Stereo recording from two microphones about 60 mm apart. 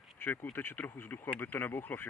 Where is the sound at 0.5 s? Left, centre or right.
Left.